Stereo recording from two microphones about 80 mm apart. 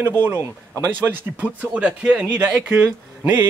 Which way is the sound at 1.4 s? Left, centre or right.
Centre.